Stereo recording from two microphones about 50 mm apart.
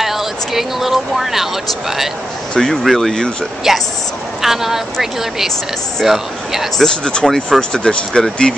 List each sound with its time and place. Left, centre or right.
0.0 s speech: centre
2.5 s speech: centre
6.0 s speech: centre
6.8 s speech: centre